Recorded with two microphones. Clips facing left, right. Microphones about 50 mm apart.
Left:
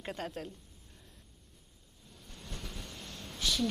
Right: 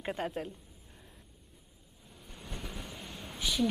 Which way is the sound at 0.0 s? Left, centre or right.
Centre.